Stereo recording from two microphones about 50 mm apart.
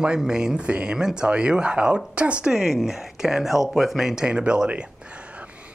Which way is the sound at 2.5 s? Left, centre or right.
Centre.